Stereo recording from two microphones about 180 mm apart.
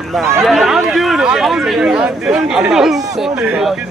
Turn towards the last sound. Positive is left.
turn(degrees=-5)  # may be behind; listen again after turning